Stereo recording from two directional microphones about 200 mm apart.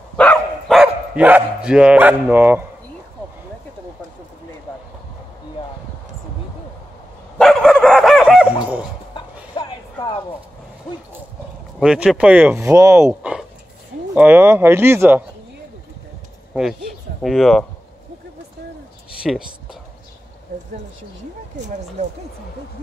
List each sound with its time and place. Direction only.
0.2 s dog: 5° left (ahead or behind)
7.3 s dog: centre (ahead or behind)
9.1 s a sound: 20° left (ahead or behind)
11.8 s speech: 5° right (ahead or behind)
17.2 s speech: centre (ahead or behind)
19.2 s a sound: centre (ahead or behind)
22.0 s speech: 35° right (ahead or behind)